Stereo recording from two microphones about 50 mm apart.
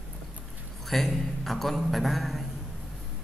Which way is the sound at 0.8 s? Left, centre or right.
Centre.